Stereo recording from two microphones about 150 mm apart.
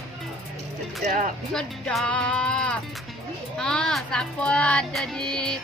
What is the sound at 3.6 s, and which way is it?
Child singing, 5° left (ahead or behind).